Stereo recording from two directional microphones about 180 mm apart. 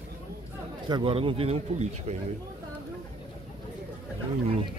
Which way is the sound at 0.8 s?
25° right (ahead or behind).